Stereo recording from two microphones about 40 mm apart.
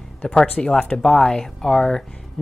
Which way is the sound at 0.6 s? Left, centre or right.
Centre.